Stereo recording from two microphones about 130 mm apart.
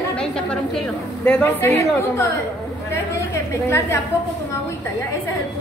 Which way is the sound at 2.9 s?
20° left (ahead or behind).